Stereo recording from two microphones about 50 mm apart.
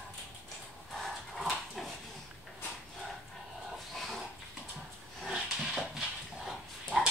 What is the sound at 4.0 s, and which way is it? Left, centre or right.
Pig, centre.